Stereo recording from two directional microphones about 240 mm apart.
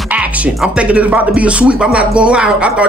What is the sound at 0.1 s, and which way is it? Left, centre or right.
Speech, centre.